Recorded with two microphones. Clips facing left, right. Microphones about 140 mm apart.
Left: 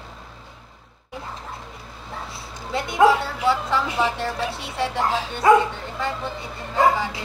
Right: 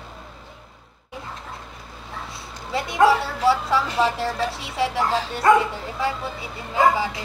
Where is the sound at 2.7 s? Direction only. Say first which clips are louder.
Left 1 dB; 5° right (ahead or behind).